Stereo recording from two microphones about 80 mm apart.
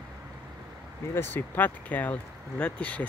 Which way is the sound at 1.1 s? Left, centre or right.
Left.